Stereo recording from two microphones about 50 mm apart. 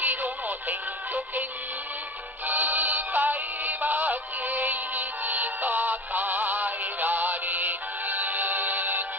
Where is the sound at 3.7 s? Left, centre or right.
Right.